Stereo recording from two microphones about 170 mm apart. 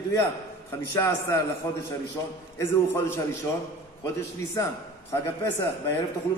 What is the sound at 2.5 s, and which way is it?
A man's voice, 15° left (ahead or behind).